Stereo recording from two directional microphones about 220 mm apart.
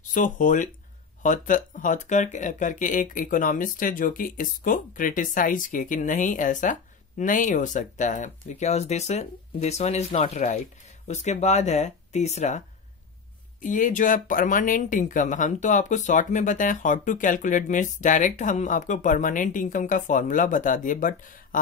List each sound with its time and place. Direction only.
0.1 s speech: 35° left (ahead or behind)